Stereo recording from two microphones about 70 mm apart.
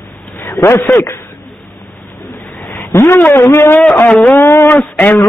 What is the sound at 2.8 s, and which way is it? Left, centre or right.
Speech, left.